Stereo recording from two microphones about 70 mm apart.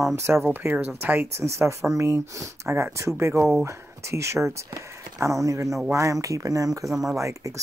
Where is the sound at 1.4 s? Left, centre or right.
Right.